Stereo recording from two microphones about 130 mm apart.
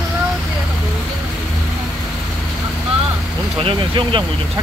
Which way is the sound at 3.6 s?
45° right (ahead or behind).